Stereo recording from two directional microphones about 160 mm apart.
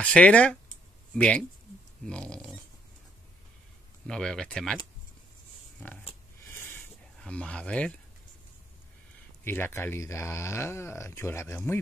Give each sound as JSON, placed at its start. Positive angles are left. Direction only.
{"t": 0.0, "sound": "speech", "side_deg": 5}
{"t": 4.1, "sound": "speech", "side_deg": 5}
{"t": 6.4, "sound": "a sound", "side_deg": 15}
{"t": 9.4, "sound": "speech", "side_deg": 15}